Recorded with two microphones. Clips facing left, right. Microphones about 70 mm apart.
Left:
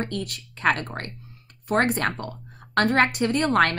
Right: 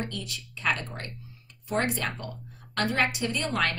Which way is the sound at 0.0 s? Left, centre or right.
Left.